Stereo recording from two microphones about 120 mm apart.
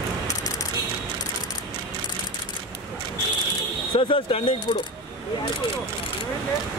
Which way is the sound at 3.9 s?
50° left (ahead or behind).